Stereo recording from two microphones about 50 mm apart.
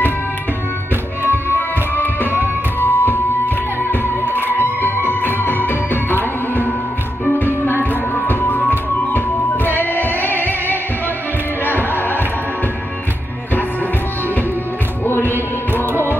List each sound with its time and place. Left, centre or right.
1.2 s music: left
15.0 s music: left